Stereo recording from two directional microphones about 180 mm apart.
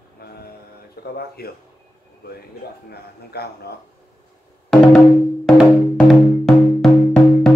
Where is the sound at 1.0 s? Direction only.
60° left (ahead or behind).